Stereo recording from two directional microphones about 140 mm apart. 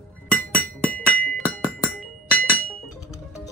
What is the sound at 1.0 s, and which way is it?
Percussion, 10° left (ahead or behind).